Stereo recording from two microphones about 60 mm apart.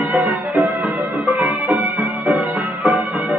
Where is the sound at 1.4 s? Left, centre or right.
Right.